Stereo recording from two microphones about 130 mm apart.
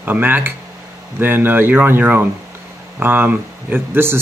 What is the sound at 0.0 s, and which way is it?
Speech, 15° right (ahead or behind).